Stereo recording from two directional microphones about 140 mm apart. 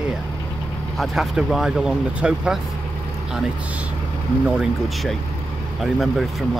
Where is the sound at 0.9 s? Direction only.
Centre (ahead or behind).